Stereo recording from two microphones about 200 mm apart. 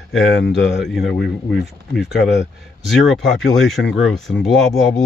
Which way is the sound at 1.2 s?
55° left (ahead or behind).